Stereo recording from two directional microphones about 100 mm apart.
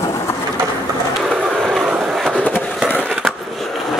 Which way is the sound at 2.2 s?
15° left (ahead or behind).